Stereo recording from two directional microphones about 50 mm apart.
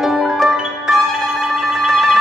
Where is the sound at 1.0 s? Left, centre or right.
Centre.